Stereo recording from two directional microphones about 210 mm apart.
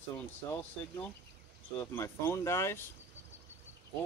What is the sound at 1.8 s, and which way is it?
Speech, 15° left (ahead or behind).